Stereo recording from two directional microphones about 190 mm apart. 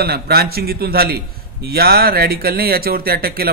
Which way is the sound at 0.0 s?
55° right (ahead or behind).